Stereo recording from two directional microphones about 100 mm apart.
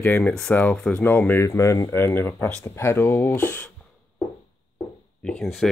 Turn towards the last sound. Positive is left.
turn(degrees=0)  # may be behind; listen again after turning